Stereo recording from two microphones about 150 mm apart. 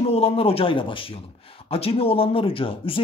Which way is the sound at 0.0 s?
40° left (ahead or behind).